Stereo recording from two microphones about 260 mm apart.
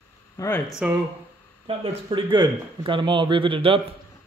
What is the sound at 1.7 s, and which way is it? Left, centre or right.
Speech, right.